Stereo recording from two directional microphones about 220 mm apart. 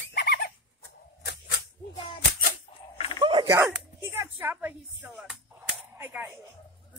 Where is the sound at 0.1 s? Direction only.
45° left (ahead or behind).